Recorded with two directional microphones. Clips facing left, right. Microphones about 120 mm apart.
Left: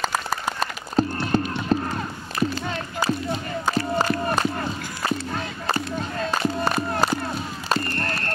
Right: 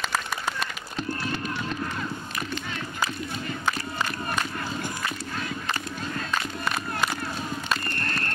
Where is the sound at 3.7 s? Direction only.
35° left (ahead or behind).